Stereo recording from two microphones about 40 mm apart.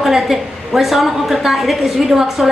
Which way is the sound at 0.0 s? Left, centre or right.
Centre.